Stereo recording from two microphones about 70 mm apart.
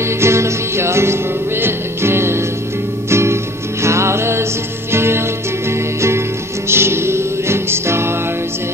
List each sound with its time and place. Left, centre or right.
0.2 s music: right